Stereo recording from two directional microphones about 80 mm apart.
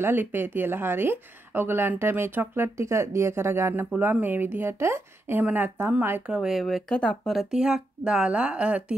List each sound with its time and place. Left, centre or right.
0.0 s speech: right
3.9 s speech: right
5.4 s speech: right
6.2 s speech: centre
6.6 s speech: centre
7.3 s speech: centre